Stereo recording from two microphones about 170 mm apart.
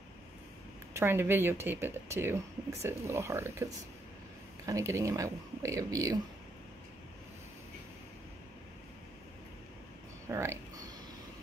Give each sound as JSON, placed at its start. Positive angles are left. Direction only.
{"t": 0.9, "sound": "speech", "side_deg": -15}
{"t": 4.6, "sound": "speech", "side_deg": -20}
{"t": 10.2, "sound": "a sound", "side_deg": -15}